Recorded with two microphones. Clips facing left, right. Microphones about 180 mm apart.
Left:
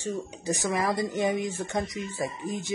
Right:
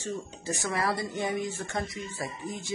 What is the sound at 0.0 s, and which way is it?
Speech, 15° left (ahead or behind).